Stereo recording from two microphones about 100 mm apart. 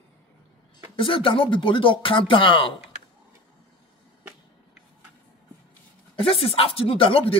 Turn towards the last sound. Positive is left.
turn(degrees=70)  # may be behind; listen again after turning